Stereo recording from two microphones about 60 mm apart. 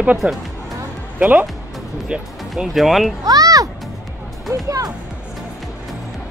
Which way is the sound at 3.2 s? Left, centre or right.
Right.